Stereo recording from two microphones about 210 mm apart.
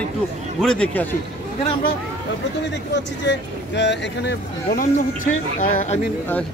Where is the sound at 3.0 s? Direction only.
55° left (ahead or behind).